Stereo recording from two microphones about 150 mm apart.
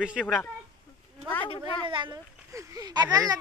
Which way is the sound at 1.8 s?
35° right (ahead or behind).